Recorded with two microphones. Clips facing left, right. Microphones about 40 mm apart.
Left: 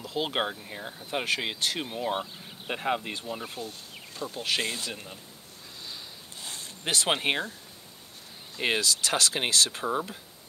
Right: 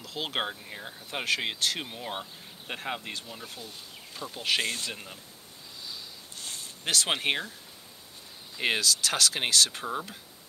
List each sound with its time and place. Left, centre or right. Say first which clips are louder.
0.0 s speech: left 3 dB; centre
3.6 s speech: left 3 dB; centre
6.8 s speech: left 1 dB; centre
8.5 s speech: even; centre